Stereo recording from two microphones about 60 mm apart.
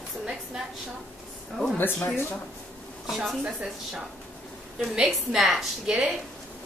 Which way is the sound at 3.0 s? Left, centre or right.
Centre.